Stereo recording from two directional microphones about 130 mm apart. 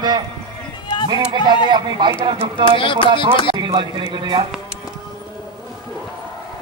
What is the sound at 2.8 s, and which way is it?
Speech, 40° left (ahead or behind).